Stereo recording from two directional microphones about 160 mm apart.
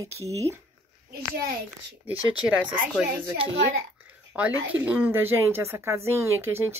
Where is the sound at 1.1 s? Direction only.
75° right (ahead or behind).